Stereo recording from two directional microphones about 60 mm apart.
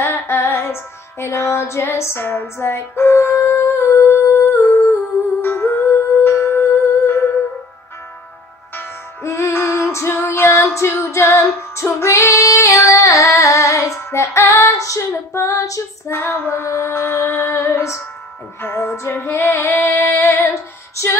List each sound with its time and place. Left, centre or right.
0.0 s music: left
8.7 s music: left
10.7 s female singing: left
16.1 s music: left
18.6 s music: left